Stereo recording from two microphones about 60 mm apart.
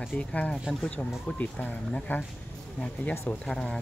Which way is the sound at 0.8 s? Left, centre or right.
Left.